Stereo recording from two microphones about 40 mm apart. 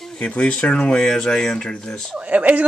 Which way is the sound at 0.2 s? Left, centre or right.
Left.